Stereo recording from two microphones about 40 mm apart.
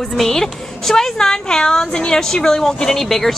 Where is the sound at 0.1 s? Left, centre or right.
Centre.